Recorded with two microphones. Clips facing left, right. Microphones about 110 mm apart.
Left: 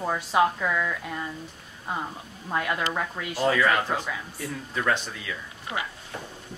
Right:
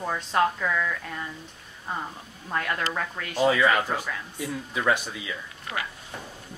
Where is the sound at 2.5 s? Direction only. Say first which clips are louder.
Left 1 dB; 5° left (ahead or behind).